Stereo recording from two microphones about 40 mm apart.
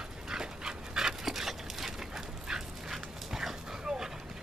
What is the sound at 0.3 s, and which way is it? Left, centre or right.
Dog, centre.